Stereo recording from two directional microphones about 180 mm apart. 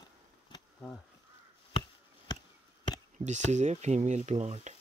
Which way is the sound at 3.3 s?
40° right (ahead or behind).